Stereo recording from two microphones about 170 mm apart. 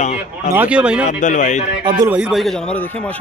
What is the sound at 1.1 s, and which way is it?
Speech, 45° left (ahead or behind).